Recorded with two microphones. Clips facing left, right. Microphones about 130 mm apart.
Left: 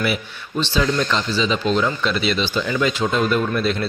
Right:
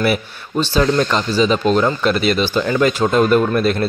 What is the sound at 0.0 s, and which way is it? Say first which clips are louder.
Speech: right 5 dB; 45° right (ahead or behind).